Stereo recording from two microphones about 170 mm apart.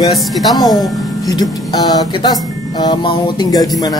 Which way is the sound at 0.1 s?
Centre (ahead or behind).